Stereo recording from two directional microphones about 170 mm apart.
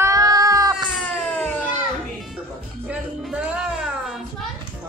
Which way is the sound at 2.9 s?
5° right (ahead or behind).